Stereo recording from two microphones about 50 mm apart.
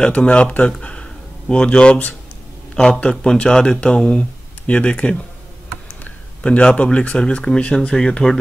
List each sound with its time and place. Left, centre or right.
0.0 s speech: left
0.7 s a sound: centre
2.7 s speech: centre